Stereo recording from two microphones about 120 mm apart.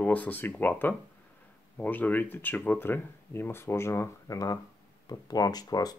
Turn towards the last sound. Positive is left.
turn(degrees=35)  # may be behind; listen again after turning